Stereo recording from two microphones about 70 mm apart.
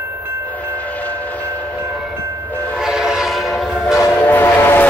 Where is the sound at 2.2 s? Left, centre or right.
Right.